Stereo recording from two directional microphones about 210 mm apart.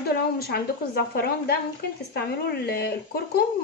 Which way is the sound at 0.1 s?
45° left (ahead or behind).